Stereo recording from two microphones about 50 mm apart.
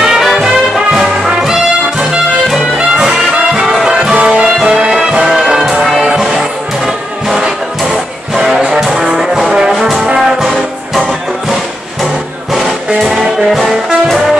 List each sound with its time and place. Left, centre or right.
0.0 s music: centre
5.2 s music: centre
8.4 s brass instrument: centre
10.1 s music: centre
13.0 s music: centre